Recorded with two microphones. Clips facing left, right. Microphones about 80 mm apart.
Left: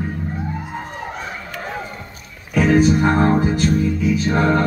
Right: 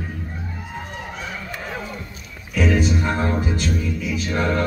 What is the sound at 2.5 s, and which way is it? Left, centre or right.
Music, left.